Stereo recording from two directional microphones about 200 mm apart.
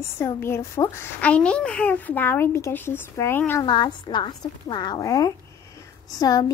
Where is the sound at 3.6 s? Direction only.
25° left (ahead or behind).